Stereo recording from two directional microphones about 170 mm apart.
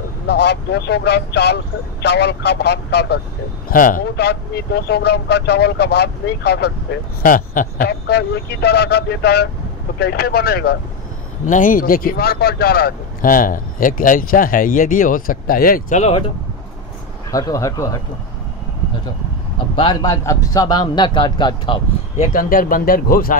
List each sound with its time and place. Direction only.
0.3 s speech: 80° left
3.6 s speech: 55° left (ahead or behind); by 6.7 s 75° left (ahead or behind)
7.2 s speech: 55° left (ahead or behind)
11.4 s speech: 50° left (ahead or behind)
16.0 s speech: 35° left (ahead or behind)
17.3 s a man's voice: 20° left (ahead or behind)
19.7 s a man's voice: 30° left (ahead or behind)
22.1 s speech: 50° left (ahead or behind)